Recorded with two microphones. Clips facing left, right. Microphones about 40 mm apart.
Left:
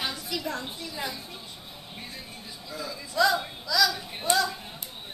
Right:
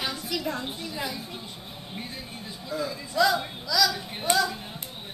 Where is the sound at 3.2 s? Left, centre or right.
Centre.